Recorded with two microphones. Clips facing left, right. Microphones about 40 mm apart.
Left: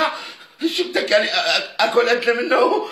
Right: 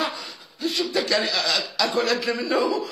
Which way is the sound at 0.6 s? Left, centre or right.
Left.